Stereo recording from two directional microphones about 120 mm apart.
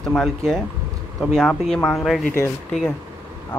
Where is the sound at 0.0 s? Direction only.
5° left (ahead or behind).